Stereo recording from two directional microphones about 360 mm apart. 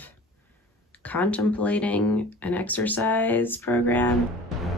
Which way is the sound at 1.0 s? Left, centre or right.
Centre.